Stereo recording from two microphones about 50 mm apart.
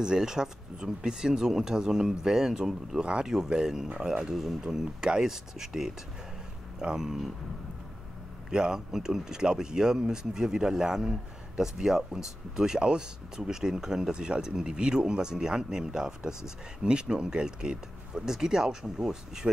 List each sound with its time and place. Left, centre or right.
0.0 s speech: centre
8.5 s speech: centre